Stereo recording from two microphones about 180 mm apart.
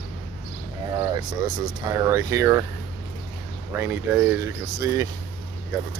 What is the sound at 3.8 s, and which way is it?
Speech, 10° right (ahead or behind).